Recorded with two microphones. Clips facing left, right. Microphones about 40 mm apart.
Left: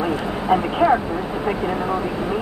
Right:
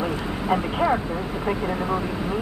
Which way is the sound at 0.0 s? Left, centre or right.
Centre.